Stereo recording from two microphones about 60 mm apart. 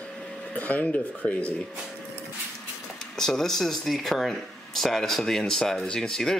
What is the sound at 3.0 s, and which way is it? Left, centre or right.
Speech, centre.